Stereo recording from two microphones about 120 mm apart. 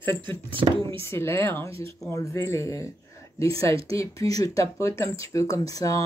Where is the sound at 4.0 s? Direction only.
30° left (ahead or behind).